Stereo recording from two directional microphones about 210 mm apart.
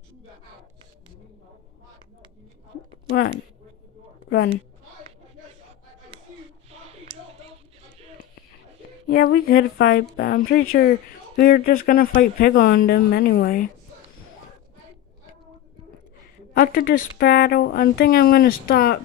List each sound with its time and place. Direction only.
6.7 s a sound: 30° right (ahead or behind)
9.0 s speech: 45° left (ahead or behind)
16.5 s speech: 45° left (ahead or behind)